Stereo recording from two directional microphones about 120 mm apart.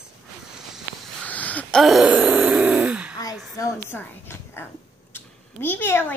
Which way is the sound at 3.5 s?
20° left (ahead or behind).